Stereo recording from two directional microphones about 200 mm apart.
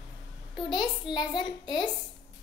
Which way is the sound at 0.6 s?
20° left (ahead or behind).